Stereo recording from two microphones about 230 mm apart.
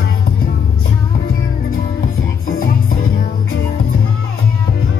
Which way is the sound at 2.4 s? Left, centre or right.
Left.